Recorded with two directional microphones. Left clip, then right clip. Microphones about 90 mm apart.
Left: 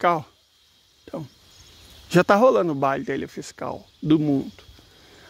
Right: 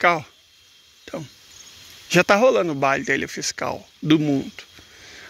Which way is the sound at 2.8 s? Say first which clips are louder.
Right 3 dB; 30° left (ahead or behind).